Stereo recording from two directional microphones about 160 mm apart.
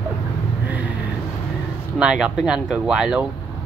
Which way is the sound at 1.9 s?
5° right (ahead or behind).